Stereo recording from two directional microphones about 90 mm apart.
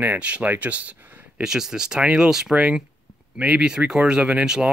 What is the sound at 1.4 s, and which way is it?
Speech, 5° right (ahead or behind).